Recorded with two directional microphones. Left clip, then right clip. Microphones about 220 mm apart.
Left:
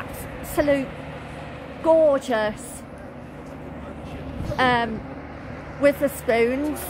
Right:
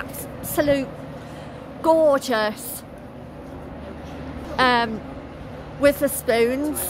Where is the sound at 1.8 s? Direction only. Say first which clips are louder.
Even; 5° right (ahead or behind).